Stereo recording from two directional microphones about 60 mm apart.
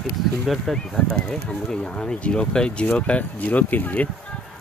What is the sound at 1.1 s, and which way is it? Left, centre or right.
Speech, centre.